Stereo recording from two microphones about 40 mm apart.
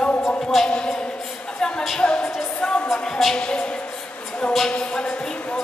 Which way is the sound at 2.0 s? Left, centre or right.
Left.